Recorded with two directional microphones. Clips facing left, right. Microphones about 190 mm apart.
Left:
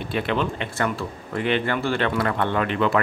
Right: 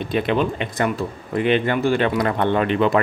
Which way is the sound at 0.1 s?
20° right (ahead or behind).